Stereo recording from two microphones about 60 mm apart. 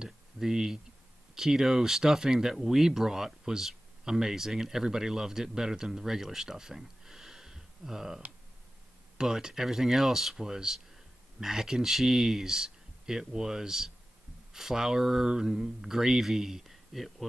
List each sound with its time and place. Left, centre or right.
0.0 s a sound: centre
1.3 s speech: centre
9.2 s speech: centre